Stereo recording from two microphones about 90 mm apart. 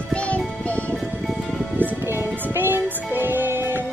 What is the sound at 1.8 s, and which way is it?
Music, 25° right (ahead or behind).